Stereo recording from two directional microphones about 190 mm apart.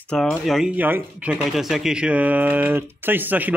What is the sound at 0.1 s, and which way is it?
Speech, 5° left (ahead or behind).